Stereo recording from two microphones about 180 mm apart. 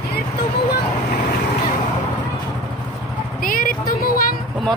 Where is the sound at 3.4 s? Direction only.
50° left (ahead or behind).